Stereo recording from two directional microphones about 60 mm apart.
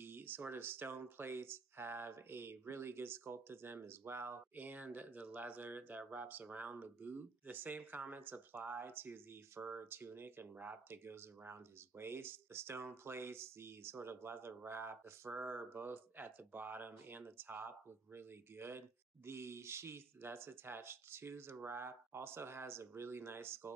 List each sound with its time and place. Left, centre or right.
0.0 s speech: right